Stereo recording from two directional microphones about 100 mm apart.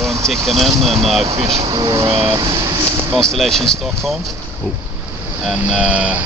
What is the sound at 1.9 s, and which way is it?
Speech, 35° right (ahead or behind).